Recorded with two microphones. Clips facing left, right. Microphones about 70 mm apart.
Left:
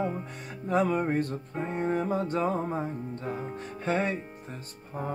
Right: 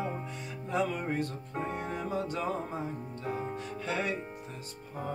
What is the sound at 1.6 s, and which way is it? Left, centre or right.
Music, left.